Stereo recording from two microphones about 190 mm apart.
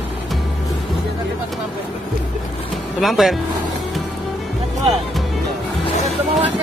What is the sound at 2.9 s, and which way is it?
Speech, centre (ahead or behind).